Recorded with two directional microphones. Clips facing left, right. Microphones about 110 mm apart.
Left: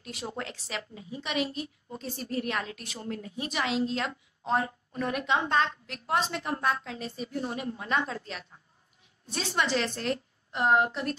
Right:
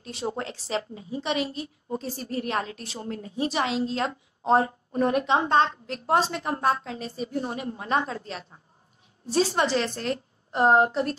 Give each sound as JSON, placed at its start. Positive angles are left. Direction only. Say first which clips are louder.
{"t": 0.0, "sound": "a woman's voice", "louder": "right 6 dB", "side_deg": -30}